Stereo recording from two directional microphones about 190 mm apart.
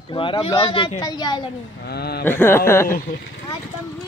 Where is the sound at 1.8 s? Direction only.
60° left (ahead or behind).